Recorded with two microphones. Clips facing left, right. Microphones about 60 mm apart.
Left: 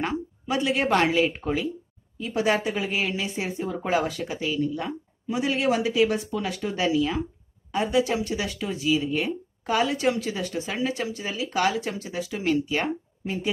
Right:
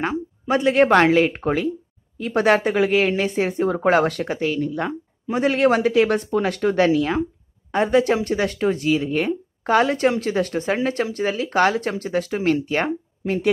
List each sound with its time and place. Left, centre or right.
0.0 s a woman's voice: right